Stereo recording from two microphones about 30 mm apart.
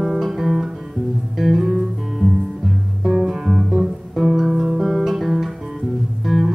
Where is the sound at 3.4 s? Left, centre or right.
Centre.